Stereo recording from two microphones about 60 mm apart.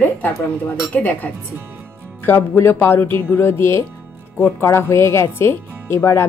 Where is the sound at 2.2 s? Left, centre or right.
Left.